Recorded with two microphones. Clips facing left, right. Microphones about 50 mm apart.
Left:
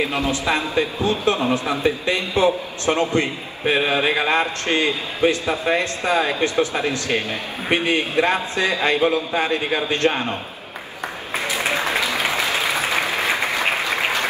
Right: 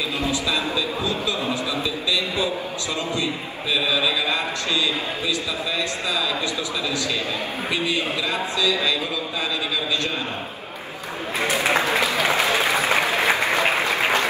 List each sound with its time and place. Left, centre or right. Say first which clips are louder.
0.0 s a man's voice: left 3 dB; left
11.6 s applause: right 1 dB; right